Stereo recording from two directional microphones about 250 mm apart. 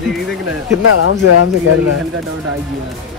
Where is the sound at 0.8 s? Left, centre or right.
Left.